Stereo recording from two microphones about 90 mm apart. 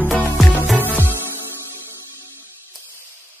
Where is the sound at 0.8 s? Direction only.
20° right (ahead or behind).